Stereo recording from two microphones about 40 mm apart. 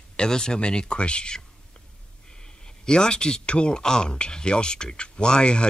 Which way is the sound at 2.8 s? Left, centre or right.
Centre.